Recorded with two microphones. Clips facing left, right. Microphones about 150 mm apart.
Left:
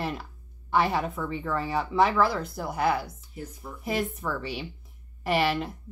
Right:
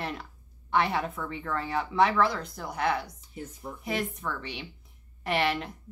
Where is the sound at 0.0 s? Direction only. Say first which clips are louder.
Left 3 dB; 5° left (ahead or behind).